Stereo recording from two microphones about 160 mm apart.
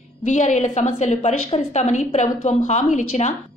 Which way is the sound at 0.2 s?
50° left (ahead or behind).